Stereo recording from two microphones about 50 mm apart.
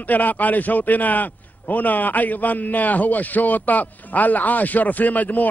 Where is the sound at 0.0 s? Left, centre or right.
Left.